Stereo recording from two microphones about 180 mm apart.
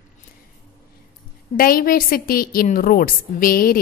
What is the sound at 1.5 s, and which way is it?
A woman's voice, 55° left (ahead or behind).